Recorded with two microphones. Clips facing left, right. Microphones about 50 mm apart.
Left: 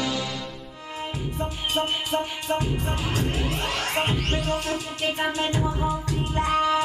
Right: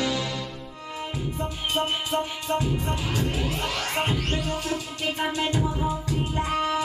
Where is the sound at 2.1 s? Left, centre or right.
Left.